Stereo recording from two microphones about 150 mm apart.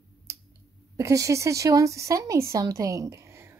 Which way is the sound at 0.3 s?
20° right (ahead or behind).